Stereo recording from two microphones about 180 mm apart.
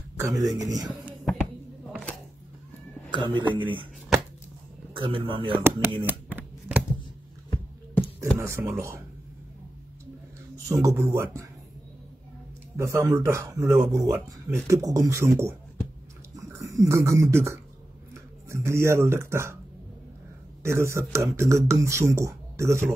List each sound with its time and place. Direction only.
0.2 s speech: 20° right (ahead or behind)
1.2 s a sound: centre (ahead or behind)
3.1 s speech: 25° right (ahead or behind)
4.9 s speech: 30° right (ahead or behind)
5.5 s speech: 15° right (ahead or behind)
6.0 s a sound: 10° right (ahead or behind)
8.4 s a man's voice: 15° right (ahead or behind)
10.7 s a man's voice: 15° right (ahead or behind)
12.7 s a man's voice: 15° right (ahead or behind)
20.6 s a man's voice: 15° right (ahead or behind)